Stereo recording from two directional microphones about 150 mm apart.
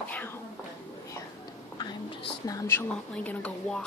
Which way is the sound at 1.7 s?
30° left (ahead or behind).